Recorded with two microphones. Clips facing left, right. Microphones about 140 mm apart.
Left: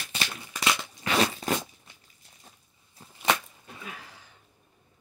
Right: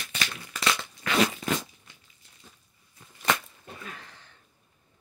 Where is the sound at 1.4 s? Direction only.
35° left (ahead or behind).